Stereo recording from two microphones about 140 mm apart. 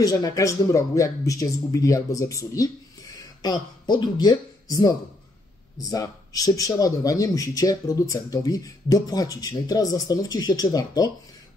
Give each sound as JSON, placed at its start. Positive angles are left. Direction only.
{"t": 0.0, "sound": "speech", "side_deg": 25}